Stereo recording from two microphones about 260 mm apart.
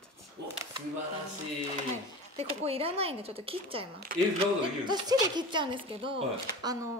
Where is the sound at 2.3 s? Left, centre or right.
Right.